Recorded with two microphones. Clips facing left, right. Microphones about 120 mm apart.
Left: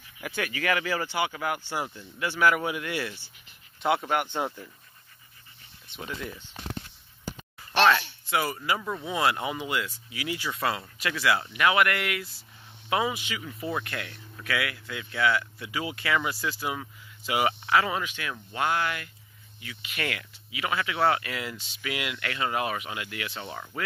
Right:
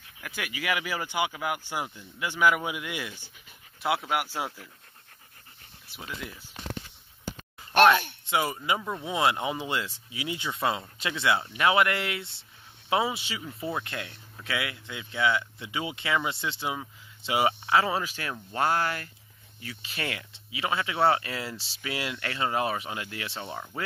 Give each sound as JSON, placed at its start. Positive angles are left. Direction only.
{"t": 0.2, "sound": "speech", "side_deg": -5}
{"t": 5.9, "sound": "speech", "side_deg": -5}
{"t": 7.7, "sound": "a sound", "side_deg": -50}
{"t": 8.3, "sound": "speech", "side_deg": -20}